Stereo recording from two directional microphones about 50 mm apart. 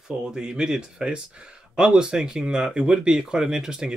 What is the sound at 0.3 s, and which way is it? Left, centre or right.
Speech, centre.